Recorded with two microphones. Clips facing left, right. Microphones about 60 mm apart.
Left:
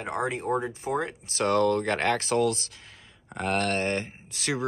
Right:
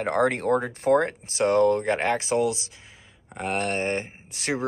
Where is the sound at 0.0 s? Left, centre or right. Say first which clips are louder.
Right 7 dB; right.